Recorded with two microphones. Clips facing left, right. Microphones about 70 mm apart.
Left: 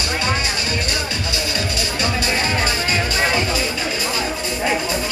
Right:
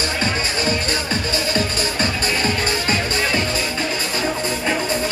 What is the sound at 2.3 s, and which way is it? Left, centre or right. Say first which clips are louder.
Music: even; left.